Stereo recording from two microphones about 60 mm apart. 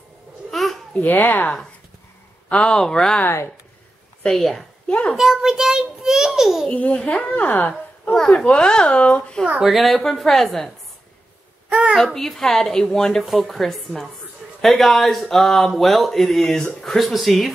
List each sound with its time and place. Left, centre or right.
0.5 s babbling: centre
1.0 s speech: left
2.5 s speech: centre
4.2 s speech: centre
4.8 s a sound: centre
5.1 s a child's voice: centre
6.7 s a woman's voice: left
8.1 s speech: centre
9.7 s speech: centre
11.7 s a sound: centre
12.0 s speech: centre
13.2 s speech: centre